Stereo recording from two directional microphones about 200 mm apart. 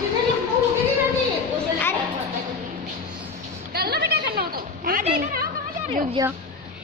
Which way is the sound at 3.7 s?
50° right (ahead or behind).